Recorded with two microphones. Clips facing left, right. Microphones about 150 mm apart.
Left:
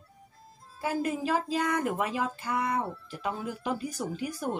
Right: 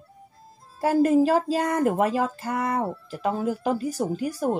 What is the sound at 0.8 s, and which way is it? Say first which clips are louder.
Speech: right 11 dB; 40° right (ahead or behind).